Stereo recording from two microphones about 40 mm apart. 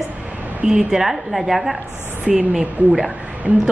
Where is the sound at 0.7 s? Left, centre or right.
Centre.